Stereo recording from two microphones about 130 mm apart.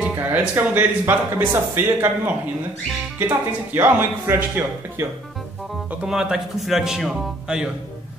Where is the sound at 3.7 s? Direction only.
15° right (ahead or behind).